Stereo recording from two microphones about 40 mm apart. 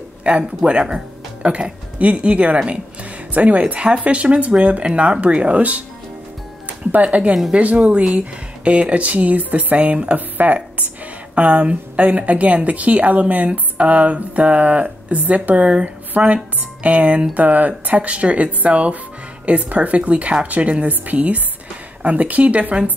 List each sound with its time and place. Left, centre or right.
0.2 s speech: right
6.9 s speech: right
11.3 s a woman's voice: right